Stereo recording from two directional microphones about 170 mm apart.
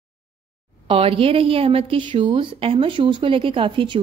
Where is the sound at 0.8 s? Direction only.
35° right (ahead or behind).